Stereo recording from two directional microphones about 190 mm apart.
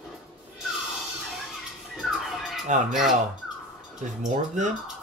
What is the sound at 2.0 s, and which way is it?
Music, centre (ahead or behind).